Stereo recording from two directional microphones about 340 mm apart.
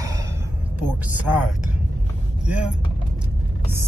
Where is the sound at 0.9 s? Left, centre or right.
Centre.